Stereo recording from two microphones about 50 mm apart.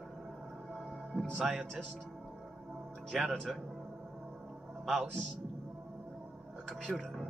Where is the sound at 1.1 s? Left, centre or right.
Centre.